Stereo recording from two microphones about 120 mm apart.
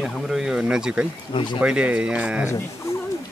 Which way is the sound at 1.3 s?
40° left (ahead or behind).